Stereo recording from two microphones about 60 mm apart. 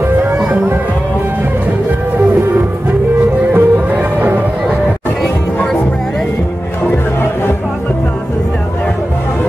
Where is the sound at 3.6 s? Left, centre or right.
Right.